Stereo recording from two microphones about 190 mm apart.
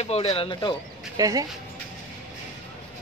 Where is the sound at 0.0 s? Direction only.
35° left (ahead or behind).